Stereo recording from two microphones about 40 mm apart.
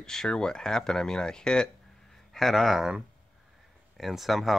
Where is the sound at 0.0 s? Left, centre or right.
Centre.